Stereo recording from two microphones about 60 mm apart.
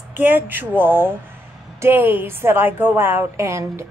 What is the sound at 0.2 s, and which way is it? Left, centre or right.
A woman's voice, right.